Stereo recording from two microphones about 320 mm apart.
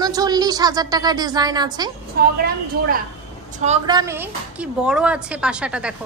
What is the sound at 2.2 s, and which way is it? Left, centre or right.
Speech, right.